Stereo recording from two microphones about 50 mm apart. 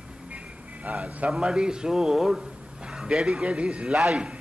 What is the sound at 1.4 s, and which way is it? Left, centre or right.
A man's voice, centre.